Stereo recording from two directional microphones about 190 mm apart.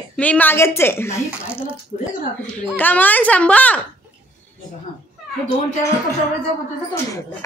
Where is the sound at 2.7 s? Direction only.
10° left (ahead or behind).